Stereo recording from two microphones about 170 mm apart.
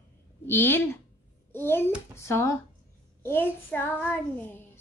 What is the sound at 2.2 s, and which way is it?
Child singing, 15° left (ahead or behind).